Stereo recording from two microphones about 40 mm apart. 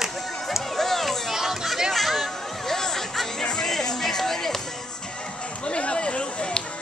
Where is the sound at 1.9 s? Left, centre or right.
Centre.